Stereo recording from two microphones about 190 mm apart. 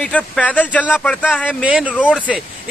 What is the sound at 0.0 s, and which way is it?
Speech, 5° left (ahead or behind).